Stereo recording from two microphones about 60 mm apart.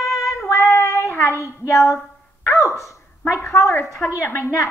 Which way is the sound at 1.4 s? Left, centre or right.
Left.